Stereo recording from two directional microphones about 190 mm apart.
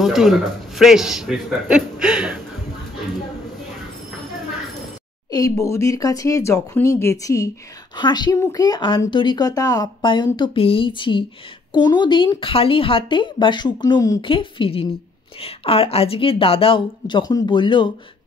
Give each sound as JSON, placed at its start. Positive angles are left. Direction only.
{"t": 0.0, "sound": "a man's voice", "side_deg": 0}
{"t": 5.3, "sound": "a woman's voice", "side_deg": 15}